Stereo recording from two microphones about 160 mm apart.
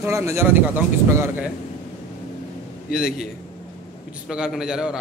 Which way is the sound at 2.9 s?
5° right (ahead or behind).